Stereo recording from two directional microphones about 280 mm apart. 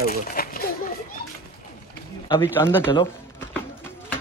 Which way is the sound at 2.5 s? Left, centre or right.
Centre.